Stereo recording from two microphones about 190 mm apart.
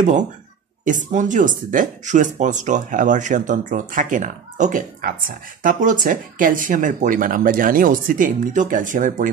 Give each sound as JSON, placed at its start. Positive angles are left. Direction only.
{"t": 0.8, "sound": "speech", "side_deg": -40}